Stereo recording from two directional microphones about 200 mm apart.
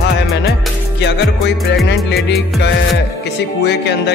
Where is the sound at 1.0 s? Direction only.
60° left (ahead or behind).